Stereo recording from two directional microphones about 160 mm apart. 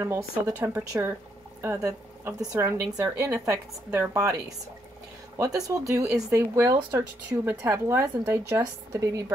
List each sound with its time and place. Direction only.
0.0 s speech: 15° right (ahead or behind)